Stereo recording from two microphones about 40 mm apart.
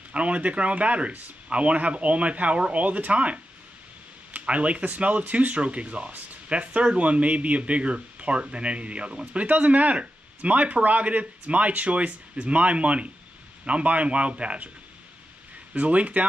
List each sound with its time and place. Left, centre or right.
0.1 s speech: right
9.4 s speech: right
15.7 s speech: right